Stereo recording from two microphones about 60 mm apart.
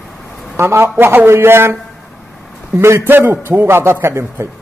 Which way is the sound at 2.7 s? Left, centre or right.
Right.